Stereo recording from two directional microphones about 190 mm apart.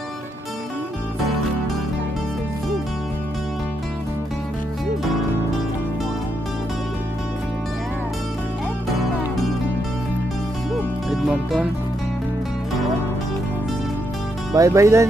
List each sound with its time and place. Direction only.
10.7 s music: centre (ahead or behind)
14.5 s speech: 15° right (ahead or behind)